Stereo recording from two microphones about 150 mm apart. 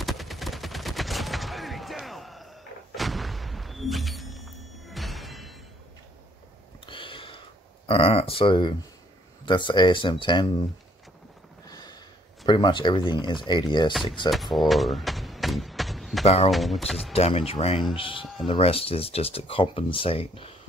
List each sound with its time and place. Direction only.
0.0 s fusillade: centre (ahead or behind)
3.0 s gunshot: centre (ahead or behind)
4.8 s music: centre (ahead or behind)
6.9 s a sound: 35° left (ahead or behind)
7.9 s speech: 40° left (ahead or behind)
11.6 s a sound: 25° left (ahead or behind)
12.4 s speech: 30° left (ahead or behind)
14.3 s a sound: centre (ahead or behind)
16.4 s speech: centre (ahead or behind)
17.1 s speech: 40° left (ahead or behind)